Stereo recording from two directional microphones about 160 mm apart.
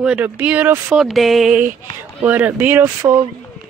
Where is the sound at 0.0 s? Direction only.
10° right (ahead or behind).